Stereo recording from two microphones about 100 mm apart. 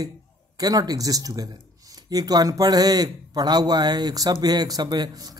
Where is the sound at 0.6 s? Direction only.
40° right (ahead or behind).